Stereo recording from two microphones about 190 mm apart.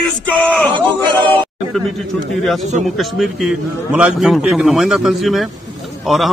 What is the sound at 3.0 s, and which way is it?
A man's voice, centre (ahead or behind).